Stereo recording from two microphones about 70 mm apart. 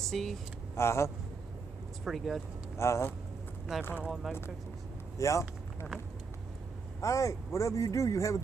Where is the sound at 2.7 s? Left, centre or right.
Left.